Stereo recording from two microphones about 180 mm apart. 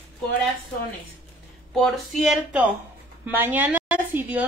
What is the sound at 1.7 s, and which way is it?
A woman's voice, centre (ahead or behind).